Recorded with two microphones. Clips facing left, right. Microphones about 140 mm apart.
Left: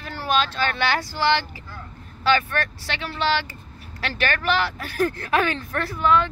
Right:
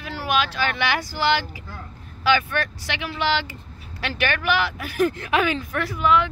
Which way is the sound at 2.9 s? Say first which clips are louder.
Even; 15° right (ahead or behind).